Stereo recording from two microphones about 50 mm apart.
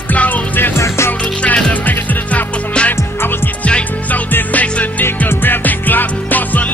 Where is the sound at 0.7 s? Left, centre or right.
Left.